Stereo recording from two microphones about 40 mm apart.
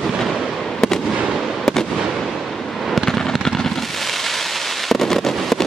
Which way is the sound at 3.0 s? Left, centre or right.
Centre.